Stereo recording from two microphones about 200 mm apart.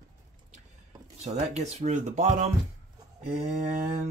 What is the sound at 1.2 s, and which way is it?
Speech, 35° right (ahead or behind).